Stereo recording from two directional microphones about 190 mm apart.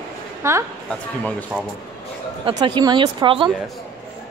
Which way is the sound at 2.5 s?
25° right (ahead or behind).